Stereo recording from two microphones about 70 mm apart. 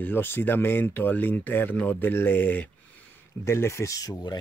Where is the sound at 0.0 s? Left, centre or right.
Left.